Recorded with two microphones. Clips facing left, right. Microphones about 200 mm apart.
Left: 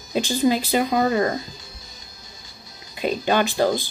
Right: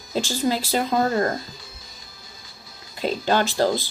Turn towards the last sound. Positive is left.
turn(degrees=15)  # may be behind; listen again after turning